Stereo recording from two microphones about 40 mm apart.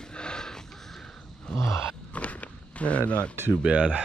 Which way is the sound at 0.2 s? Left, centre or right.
Left.